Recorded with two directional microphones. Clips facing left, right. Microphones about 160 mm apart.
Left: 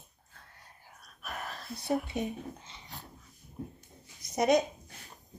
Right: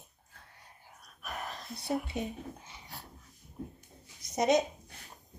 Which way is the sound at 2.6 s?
10° right (ahead or behind).